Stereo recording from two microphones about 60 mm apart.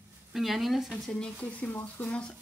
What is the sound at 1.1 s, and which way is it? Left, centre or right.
Speech, centre.